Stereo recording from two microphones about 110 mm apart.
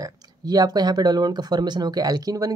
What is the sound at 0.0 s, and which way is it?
Speech, 35° right (ahead or behind).